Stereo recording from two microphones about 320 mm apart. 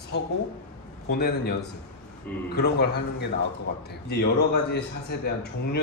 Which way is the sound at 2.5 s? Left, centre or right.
Left.